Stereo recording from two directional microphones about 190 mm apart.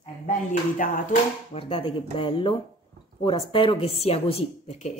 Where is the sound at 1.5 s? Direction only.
30° left (ahead or behind).